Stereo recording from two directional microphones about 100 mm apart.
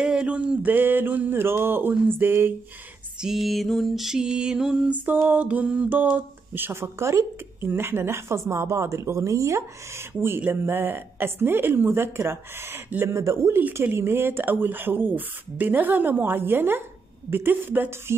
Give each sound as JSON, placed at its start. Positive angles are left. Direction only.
{"t": 0.0, "sound": "mantra", "side_deg": -10}
{"t": 3.2, "sound": "mantra", "side_deg": -5}